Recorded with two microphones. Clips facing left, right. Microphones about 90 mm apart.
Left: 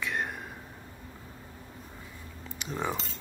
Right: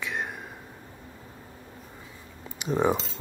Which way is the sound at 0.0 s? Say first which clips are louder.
Even; centre (ahead or behind).